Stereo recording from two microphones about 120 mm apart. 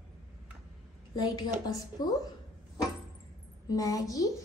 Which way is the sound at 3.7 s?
30° left (ahead or behind).